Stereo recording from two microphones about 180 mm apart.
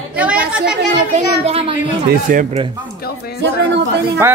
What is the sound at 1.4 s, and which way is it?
Speech, 30° right (ahead or behind).